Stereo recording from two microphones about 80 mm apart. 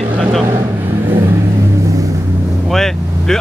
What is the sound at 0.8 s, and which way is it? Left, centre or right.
Vehicle, right.